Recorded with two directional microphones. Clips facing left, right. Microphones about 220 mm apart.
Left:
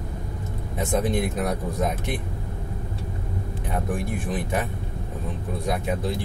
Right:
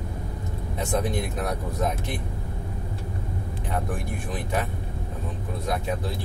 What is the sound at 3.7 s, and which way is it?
Speech, 20° left (ahead or behind).